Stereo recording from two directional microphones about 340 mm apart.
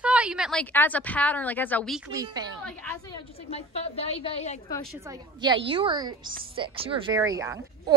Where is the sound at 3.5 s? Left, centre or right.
Centre.